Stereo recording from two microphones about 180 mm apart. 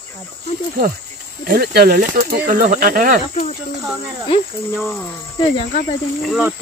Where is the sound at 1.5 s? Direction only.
60° right (ahead or behind).